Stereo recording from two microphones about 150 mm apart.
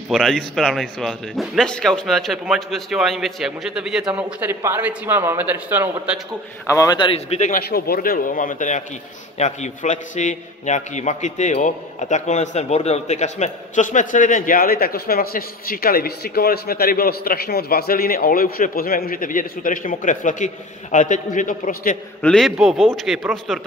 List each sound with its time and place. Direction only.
0.1 s speech: centre (ahead or behind)
6.7 s speech: 20° left (ahead or behind)
7.0 s speech: 35° left (ahead or behind)
7.3 s a man's voice: 60° left (ahead or behind)
22.2 s speech: 5° left (ahead or behind)